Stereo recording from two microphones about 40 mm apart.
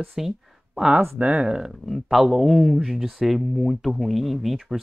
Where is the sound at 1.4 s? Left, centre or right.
Centre.